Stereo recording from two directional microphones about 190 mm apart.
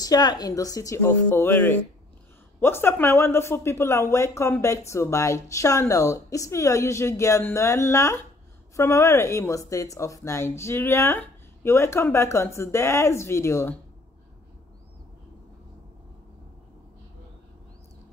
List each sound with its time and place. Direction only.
0.0 s speech: 20° left (ahead or behind)